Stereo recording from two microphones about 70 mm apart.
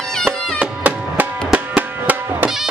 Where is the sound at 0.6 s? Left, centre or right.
Right.